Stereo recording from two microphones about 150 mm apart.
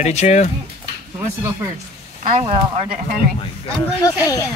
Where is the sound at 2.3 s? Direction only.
40° right (ahead or behind).